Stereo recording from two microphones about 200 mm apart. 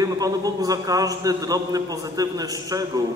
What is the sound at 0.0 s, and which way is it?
A man's voice, 20° right (ahead or behind).